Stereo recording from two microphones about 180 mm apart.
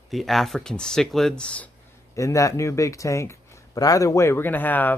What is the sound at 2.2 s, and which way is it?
Speech, 15° left (ahead or behind).